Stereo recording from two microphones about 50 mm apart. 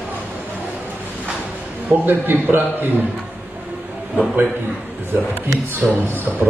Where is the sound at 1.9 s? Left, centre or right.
Right.